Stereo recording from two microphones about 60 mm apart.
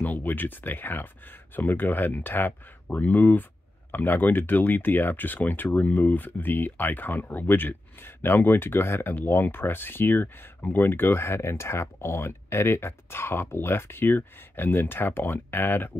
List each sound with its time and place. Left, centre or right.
0.0 s speech: left